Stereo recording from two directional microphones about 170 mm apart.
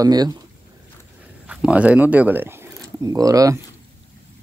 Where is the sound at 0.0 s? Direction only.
20° right (ahead or behind).